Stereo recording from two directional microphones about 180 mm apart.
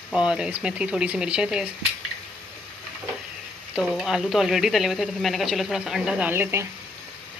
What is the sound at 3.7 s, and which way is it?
Speech, centre (ahead or behind).